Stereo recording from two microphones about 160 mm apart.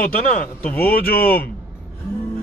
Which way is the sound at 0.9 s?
65° left (ahead or behind).